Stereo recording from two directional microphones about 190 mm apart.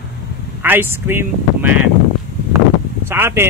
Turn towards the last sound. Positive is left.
turn(degrees=-10)  # may be behind; listen again after turning